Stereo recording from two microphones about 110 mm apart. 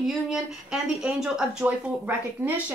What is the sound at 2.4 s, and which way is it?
Speech, 20° right (ahead or behind).